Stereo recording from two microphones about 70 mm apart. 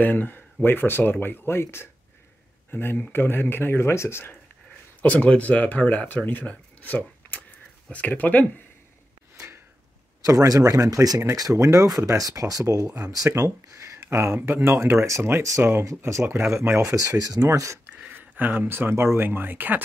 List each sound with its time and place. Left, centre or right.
0.0 s speech: left
5.0 s speech: left
10.2 s speech: right
14.0 s speech: right
15.6 s speech: right
16.0 s speech: right
18.1 s speech: right